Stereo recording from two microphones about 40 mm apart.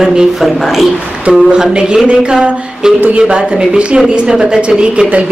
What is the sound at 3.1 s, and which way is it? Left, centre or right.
A woman's voice, right.